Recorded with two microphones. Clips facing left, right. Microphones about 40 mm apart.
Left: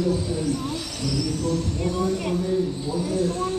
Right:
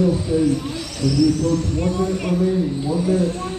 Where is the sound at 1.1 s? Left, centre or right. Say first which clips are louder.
Right 9 dB; centre.